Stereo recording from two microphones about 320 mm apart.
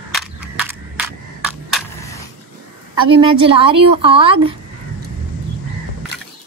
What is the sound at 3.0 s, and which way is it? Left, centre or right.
A woman's voice, centre.